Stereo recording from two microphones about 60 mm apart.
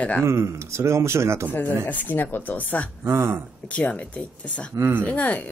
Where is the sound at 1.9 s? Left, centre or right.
Left.